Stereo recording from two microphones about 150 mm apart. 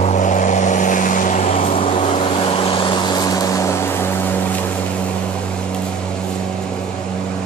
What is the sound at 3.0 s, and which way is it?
Vehicle, 25° left (ahead or behind).